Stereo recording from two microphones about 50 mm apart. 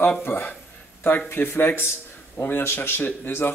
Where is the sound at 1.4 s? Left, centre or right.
Left.